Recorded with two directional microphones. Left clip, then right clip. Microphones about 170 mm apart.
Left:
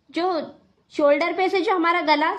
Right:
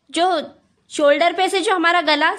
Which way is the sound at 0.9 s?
65° right (ahead or behind).